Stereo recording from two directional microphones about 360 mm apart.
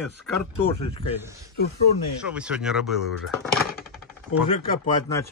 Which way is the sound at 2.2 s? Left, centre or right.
Centre.